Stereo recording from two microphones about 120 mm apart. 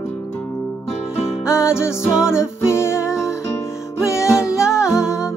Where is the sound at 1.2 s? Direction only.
25° left (ahead or behind).